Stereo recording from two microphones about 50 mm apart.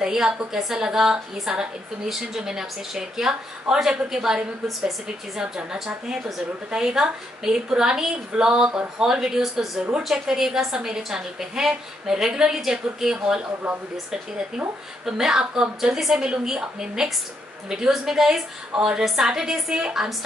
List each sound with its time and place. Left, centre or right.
0.0 s a woman's voice: centre
15.0 s a woman's voice: centre
18.7 s a woman's voice: right
18.9 s a woman's voice: centre